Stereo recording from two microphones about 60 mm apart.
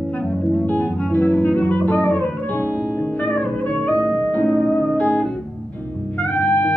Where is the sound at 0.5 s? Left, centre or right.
Left.